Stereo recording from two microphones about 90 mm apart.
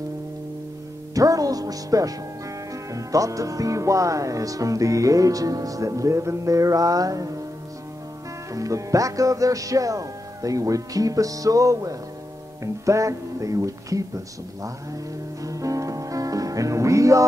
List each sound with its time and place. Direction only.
1.1 s music: 40° right (ahead or behind)
2.7 s speech: 40° right (ahead or behind)
8.5 s speech: 40° right (ahead or behind)
15.4 s music: 40° right (ahead or behind)